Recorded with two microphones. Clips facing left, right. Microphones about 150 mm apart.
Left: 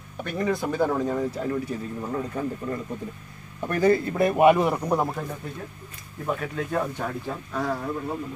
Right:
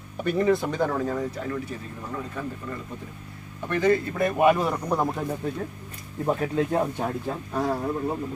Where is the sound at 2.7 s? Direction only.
40° left (ahead or behind).